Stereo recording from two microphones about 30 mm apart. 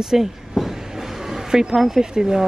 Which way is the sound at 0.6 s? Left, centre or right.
Centre.